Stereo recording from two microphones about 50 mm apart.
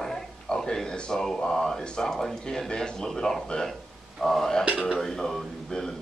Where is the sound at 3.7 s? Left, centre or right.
Centre.